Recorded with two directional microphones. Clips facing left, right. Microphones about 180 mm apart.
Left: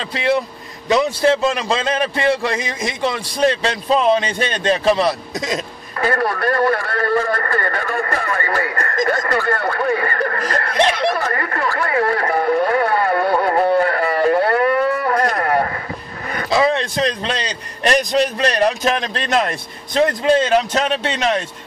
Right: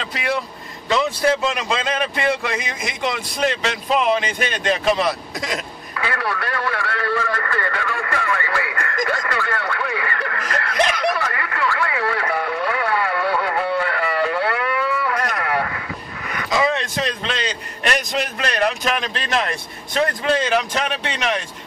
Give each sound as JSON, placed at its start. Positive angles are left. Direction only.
{"t": 0.1, "sound": "a man's voice", "side_deg": 25}
{"t": 5.9, "sound": "a man's voice", "side_deg": 45}
{"t": 11.2, "sound": "radio", "side_deg": 40}
{"t": 15.1, "sound": "vehicle", "side_deg": 35}
{"t": 16.3, "sound": "a man's voice", "side_deg": 35}
{"t": 20.0, "sound": "a man's voice", "side_deg": 25}